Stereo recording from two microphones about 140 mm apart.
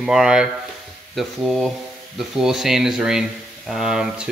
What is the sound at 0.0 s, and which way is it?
Speech, 5° right (ahead or behind).